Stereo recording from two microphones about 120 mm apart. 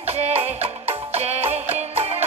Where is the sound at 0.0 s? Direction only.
60° right (ahead or behind).